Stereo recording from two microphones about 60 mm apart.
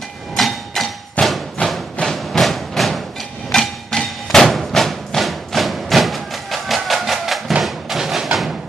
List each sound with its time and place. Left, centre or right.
0.4 s hammer: centre
1.2 s thump: left
2.1 s a sound: centre
3.5 s music: centre